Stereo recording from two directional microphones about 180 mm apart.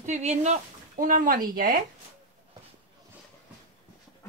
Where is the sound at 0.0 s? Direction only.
40° right (ahead or behind).